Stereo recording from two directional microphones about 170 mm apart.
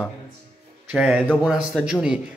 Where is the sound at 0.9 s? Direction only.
5° right (ahead or behind).